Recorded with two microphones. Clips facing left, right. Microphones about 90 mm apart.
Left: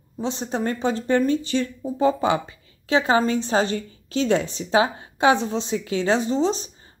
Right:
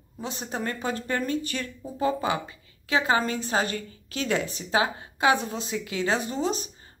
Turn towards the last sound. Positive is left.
turn(degrees=30)  # may be behind; listen again after turning